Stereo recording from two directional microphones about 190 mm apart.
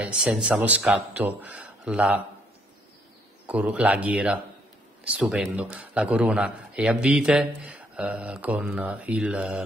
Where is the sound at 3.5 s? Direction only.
5° right (ahead or behind).